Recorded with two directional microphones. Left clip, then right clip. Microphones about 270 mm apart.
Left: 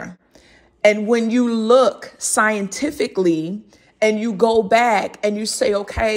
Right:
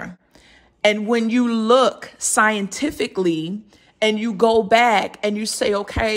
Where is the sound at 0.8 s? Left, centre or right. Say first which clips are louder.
Left 3 dB; centre.